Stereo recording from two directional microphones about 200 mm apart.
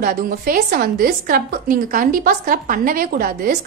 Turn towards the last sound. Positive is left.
turn(degrees=-45)  # may be behind; listen again after turning